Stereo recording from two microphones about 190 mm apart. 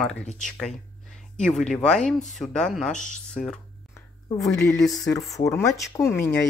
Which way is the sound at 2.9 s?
40° left (ahead or behind).